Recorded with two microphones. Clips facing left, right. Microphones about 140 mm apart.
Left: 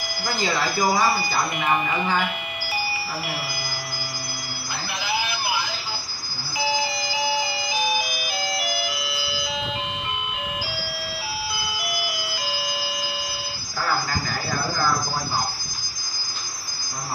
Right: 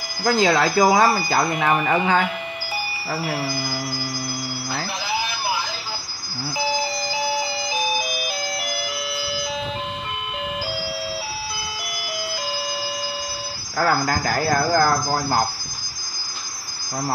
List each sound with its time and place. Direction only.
0.2 s speech: 70° right (ahead or behind)
13.7 s speech: 65° right (ahead or behind)